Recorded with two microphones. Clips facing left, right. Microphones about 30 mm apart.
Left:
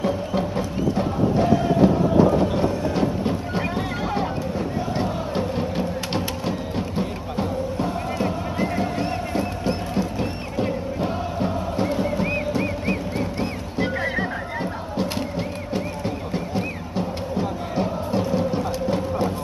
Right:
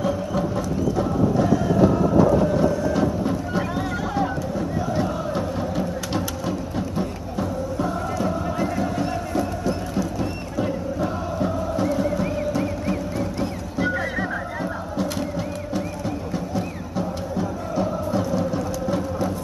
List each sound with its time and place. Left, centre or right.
0.0 s music: left
12.5 s neigh: left
14.6 s music: left